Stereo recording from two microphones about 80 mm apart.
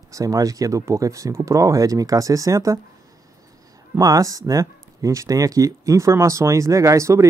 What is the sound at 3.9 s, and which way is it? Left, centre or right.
Speech, right.